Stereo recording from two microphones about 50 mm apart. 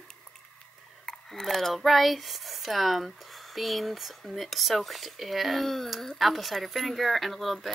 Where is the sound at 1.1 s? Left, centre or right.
Centre.